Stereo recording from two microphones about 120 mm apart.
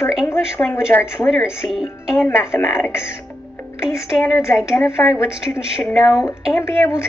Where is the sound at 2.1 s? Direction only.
20° left (ahead or behind).